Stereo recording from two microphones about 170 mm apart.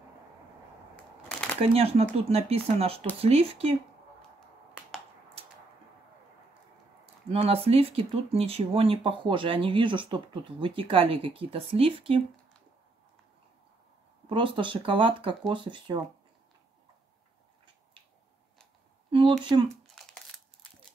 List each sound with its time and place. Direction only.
1.6 s speech: 35° right (ahead or behind)
7.2 s speech: 35° right (ahead or behind)
14.3 s speech: 30° right (ahead or behind)
19.0 s a sound: 30° right (ahead or behind)